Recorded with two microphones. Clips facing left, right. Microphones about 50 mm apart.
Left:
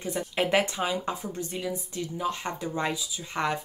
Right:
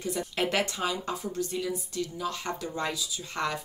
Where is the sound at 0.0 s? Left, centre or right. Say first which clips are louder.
Left 1 dB; left.